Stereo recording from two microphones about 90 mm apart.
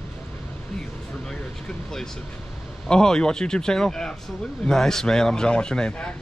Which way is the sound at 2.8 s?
10° left (ahead or behind).